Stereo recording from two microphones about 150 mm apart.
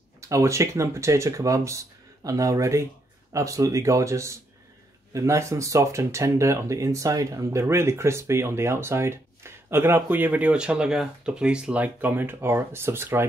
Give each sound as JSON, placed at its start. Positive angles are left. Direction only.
{"t": 0.3, "sound": "speech", "side_deg": -20}